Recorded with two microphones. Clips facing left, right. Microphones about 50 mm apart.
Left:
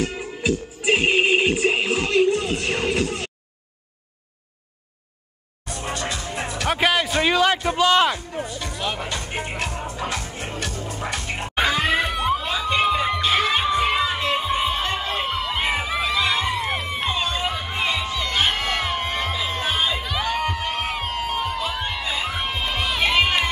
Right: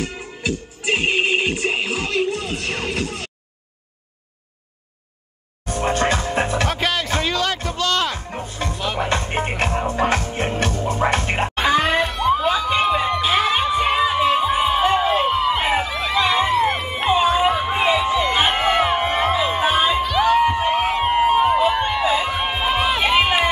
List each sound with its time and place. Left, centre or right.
0.1 s music: centre
2.6 s speech: centre
5.7 s music: right
6.7 s music: centre
7.2 s a sound: centre
8.5 s music: right
11.6 s music: centre
12.4 s crowd: centre
20.5 s crowd: centre
21.0 s a sound: right; by 22.4 s centre
22.4 s run: centre